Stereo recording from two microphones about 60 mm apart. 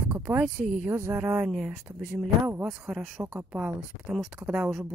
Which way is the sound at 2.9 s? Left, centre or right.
Centre.